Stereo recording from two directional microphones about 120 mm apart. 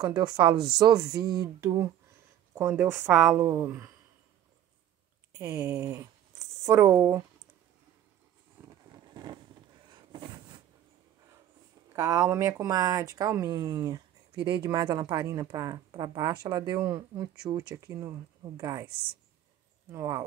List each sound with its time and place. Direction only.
0.0 s a sound: 30° right (ahead or behind)
2.5 s speech: 20° right (ahead or behind)
5.5 s speech: 20° right (ahead or behind)
8.8 s vehicle: 35° right (ahead or behind)
9.8 s a sound: 40° right (ahead or behind)
11.9 s speech: 30° right (ahead or behind)
19.9 s speech: 25° right (ahead or behind)